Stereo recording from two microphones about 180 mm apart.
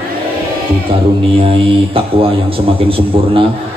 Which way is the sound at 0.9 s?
30° right (ahead or behind).